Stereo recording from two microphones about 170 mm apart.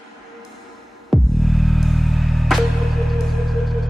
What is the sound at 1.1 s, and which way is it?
Music, centre (ahead or behind).